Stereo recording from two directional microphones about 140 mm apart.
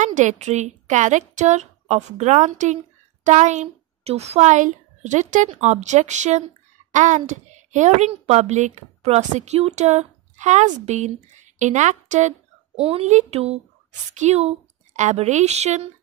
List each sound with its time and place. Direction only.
0.0 s a woman's voice: 60° right (ahead or behind)